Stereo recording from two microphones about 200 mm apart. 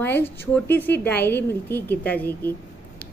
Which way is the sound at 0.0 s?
10° left (ahead or behind).